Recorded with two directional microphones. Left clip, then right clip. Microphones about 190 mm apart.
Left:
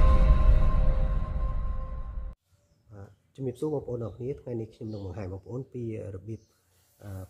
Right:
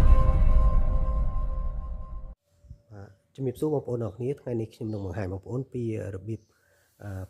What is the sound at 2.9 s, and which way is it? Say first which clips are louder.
Speech: right 3 dB; 10° right (ahead or behind).